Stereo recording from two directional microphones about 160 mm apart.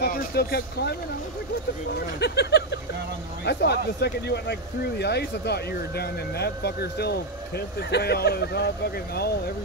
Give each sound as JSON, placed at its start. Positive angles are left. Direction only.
{"t": 0.0, "sound": "speech", "side_deg": 80}
{"t": 2.1, "sound": "speech", "side_deg": 90}